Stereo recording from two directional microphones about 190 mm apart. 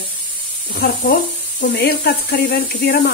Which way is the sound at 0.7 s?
50° left (ahead or behind).